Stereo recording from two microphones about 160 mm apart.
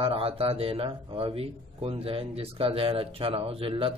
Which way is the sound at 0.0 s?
35° right (ahead or behind).